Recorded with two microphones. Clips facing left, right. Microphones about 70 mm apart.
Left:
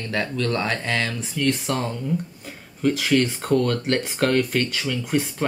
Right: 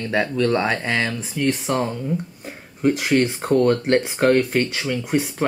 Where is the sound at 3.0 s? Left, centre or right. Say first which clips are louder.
Right 2 dB; right.